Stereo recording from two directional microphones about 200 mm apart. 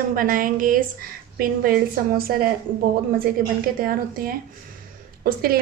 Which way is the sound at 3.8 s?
45° right (ahead or behind).